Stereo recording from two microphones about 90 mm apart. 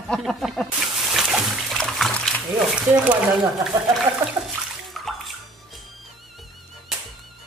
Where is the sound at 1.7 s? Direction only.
Centre (ahead or behind).